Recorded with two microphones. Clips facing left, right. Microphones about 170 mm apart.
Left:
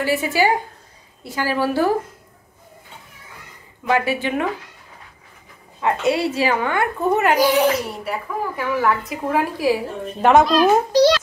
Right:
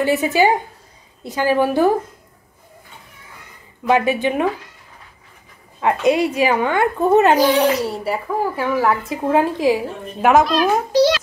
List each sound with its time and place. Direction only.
0.0 s a woman's voice: 20° right (ahead or behind)
3.8 s a woman's voice: 20° right (ahead or behind)
5.8 s a woman's voice: 20° right (ahead or behind)
7.3 s a child's voice: 10° left (ahead or behind)
7.8 s a woman's voice: 30° right (ahead or behind)
10.2 s speech: centre (ahead or behind)